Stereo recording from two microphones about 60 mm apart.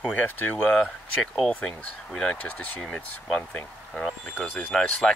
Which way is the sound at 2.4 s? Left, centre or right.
Left.